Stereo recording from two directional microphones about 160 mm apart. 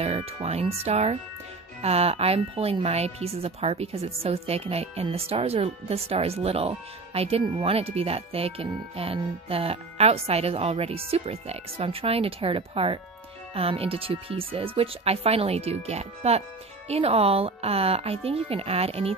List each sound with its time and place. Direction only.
0.0 s speech: 40° right (ahead or behind)